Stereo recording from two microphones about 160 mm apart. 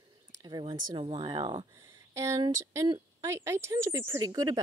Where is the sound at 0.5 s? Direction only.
30° right (ahead or behind).